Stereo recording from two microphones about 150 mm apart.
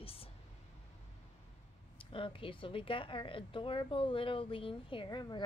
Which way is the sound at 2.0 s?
35° left (ahead or behind).